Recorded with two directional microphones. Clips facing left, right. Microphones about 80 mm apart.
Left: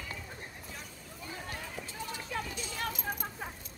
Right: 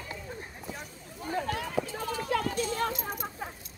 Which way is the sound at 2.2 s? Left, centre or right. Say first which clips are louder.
Right 10 dB; right.